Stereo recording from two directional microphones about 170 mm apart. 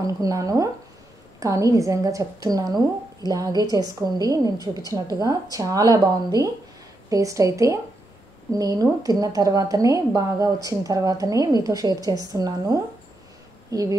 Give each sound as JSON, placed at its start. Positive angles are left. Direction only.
{"t": 0.0, "sound": "a woman's voice", "side_deg": -20}